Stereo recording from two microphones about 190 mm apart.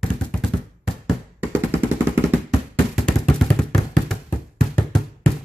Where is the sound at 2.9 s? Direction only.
Centre (ahead or behind).